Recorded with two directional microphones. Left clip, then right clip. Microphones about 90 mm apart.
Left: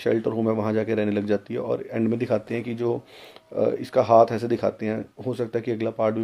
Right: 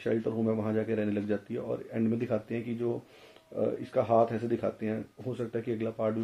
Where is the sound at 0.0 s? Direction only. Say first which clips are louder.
Left 7 dB; 20° left (ahead or behind).